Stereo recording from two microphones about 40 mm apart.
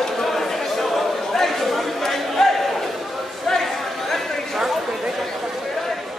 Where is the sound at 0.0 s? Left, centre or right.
Centre.